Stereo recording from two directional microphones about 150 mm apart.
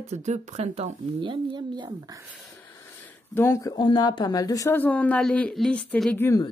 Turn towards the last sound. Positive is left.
turn(degrees=10)  # may be behind; listen again after turning